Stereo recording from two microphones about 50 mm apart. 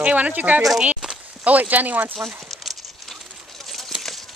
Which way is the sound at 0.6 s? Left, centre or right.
Centre.